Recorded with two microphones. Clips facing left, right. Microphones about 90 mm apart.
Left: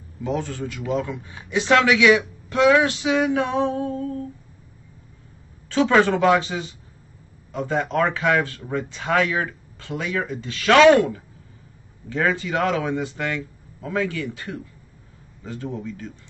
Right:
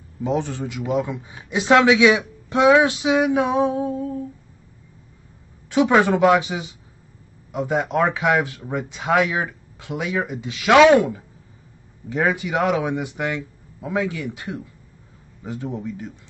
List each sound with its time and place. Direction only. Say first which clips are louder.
0.2 s a man's voice: right 3 dB; 20° right (ahead or behind)
5.7 s a man's voice: right 1 dB; 15° right (ahead or behind)